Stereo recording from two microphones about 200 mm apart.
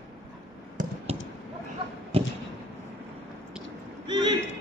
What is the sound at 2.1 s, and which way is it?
Thump, 25° right (ahead or behind).